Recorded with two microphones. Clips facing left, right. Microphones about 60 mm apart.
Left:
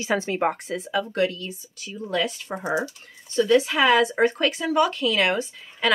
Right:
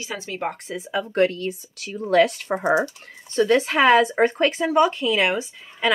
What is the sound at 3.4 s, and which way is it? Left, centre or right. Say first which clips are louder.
Speech: right 1 dB; right.